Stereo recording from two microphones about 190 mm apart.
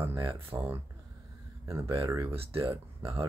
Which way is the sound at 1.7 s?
15° right (ahead or behind).